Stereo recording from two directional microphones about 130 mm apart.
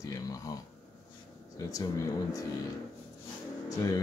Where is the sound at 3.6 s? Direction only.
25° left (ahead or behind).